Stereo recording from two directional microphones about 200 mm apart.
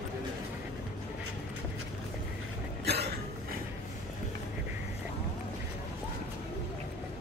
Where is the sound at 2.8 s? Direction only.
55° right (ahead or behind).